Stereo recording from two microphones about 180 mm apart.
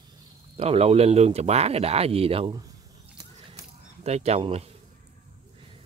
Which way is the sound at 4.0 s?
35° right (ahead or behind).